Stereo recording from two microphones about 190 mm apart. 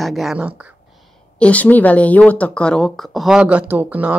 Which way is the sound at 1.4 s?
10° left (ahead or behind).